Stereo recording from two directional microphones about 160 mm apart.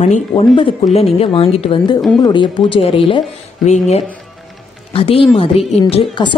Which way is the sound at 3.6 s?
45° left (ahead or behind).